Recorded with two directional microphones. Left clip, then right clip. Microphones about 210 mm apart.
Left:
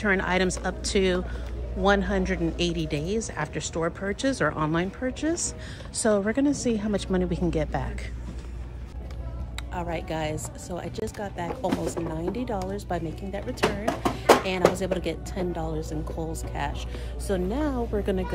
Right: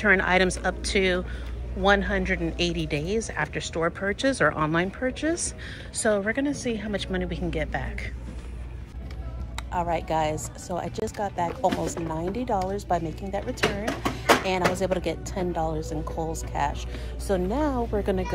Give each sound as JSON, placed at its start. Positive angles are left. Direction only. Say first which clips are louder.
{"t": 0.0, "sound": "speech", "louder": "right 4 dB", "side_deg": 10}
{"t": 3.8, "sound": "a woman's voice", "louder": "right 3 dB", "side_deg": 5}
{"t": 9.7, "sound": "speech", "louder": "right 5 dB", "side_deg": 5}
{"t": 14.8, "sound": "speech", "louder": "right 2 dB", "side_deg": 5}